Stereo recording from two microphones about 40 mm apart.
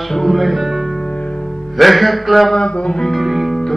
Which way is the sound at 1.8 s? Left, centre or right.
Centre.